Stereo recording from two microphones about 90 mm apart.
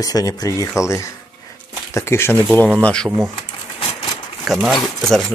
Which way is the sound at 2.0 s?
30° left (ahead or behind).